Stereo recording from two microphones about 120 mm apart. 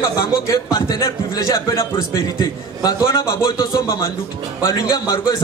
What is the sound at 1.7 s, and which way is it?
Speech, 20° left (ahead or behind).